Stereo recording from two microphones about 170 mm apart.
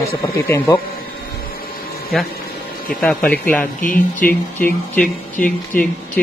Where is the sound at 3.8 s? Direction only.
50° left (ahead or behind).